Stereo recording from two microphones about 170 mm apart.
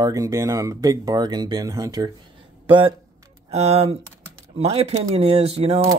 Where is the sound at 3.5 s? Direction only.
35° right (ahead or behind).